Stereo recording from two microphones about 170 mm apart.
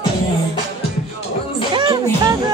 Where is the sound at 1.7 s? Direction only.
25° right (ahead or behind).